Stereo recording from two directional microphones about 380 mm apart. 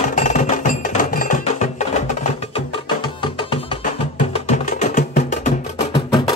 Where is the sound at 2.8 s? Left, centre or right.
Centre.